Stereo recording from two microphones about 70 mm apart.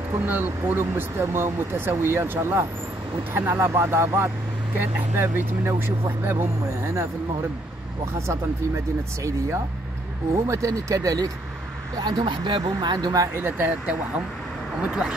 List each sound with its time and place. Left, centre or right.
0.2 s speech: right
8.3 s speech: right
12.0 s speech: right
13.3 s speech: right
14.8 s speech: centre